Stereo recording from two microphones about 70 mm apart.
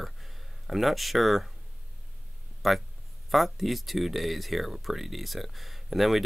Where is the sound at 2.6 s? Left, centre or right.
Centre.